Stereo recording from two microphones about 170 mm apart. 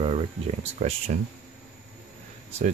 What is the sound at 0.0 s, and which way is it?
Speech, 35° right (ahead or behind).